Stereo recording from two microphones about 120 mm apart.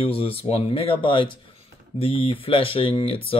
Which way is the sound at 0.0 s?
50° left (ahead or behind).